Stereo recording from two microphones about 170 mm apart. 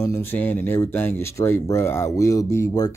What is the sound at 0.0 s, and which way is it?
Speech, 15° left (ahead or behind).